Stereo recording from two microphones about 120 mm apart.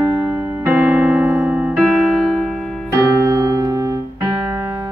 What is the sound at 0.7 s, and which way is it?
Music, centre (ahead or behind).